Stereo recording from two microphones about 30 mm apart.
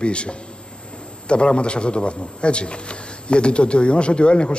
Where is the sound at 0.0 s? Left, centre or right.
Left.